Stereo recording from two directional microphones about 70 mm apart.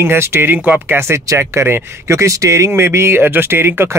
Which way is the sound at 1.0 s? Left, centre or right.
Right.